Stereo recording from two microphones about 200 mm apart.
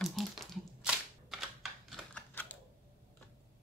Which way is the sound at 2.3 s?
10° left (ahead or behind).